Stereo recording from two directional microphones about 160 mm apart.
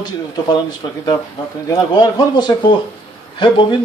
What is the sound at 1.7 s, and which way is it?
A man's voice, 25° left (ahead or behind).